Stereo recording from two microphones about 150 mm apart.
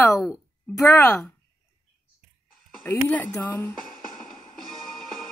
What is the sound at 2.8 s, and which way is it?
Speech, 10° left (ahead or behind).